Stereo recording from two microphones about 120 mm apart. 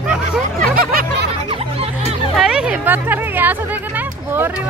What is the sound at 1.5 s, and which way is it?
Music, 55° right (ahead or behind).